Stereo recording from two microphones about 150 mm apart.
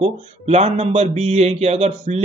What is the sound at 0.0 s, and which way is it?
Speech, 45° right (ahead or behind).